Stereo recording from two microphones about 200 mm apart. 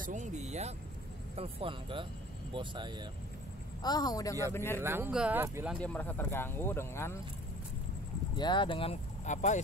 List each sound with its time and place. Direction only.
0.0 s speech: 35° right (ahead or behind)
3.8 s speech: 20° left (ahead or behind)
4.8 s speech: 10° right (ahead or behind)
5.8 s speech: 10° left (ahead or behind)
8.4 s speech: 25° left (ahead or behind)